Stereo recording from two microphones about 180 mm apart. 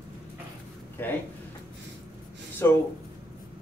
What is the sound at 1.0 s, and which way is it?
Speech, 10° left (ahead or behind).